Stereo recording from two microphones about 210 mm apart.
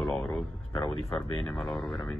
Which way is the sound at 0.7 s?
20° left (ahead or behind).